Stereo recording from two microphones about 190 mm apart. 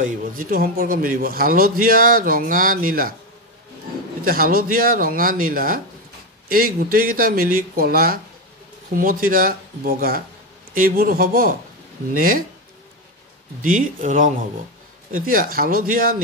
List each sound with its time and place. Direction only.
0.0 s speech: 45° right (ahead or behind)
4.2 s speech: 50° right (ahead or behind)
13.6 s speech: 45° right (ahead or behind)